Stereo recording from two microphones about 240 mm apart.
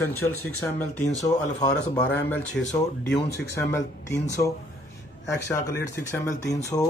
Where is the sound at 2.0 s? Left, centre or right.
Centre.